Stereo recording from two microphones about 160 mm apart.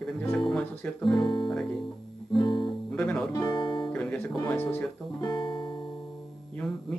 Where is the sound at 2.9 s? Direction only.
5° left (ahead or behind).